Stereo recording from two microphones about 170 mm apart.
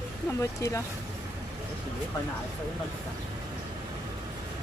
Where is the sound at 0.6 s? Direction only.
20° left (ahead or behind).